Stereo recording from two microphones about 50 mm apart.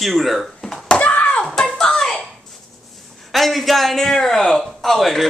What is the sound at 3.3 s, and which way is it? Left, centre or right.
A man's voice, centre.